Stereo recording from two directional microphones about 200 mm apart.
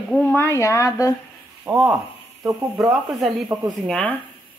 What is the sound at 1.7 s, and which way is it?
Speech, 10° right (ahead or behind).